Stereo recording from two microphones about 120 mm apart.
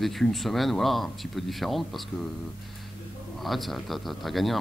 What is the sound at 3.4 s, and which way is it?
Speech, centre (ahead or behind).